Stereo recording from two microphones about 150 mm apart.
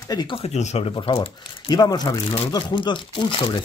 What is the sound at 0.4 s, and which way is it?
Speech, 50° left (ahead or behind).